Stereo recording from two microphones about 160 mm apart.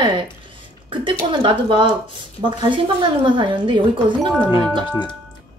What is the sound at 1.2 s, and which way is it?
Speech, 30° right (ahead or behind).